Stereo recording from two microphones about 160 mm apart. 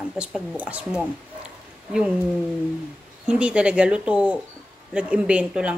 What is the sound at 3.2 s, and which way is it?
Speech, 5° right (ahead or behind).